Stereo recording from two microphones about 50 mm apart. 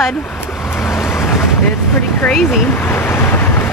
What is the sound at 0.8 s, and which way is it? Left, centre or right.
Vehicle, left.